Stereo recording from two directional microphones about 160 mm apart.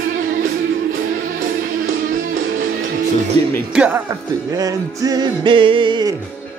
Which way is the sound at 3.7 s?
10° right (ahead or behind).